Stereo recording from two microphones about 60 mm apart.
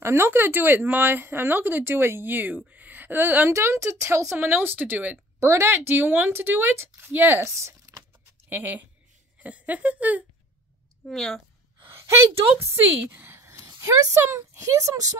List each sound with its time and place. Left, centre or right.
0.0 s speech: right
2.7 s a sound: right
3.5 s speech: right
4.4 s speech: right
5.4 s speech: right
5.7 s speech: right
7.3 s speech: right
8.5 s speech: right
11.1 s speech: centre
12.0 s speech: right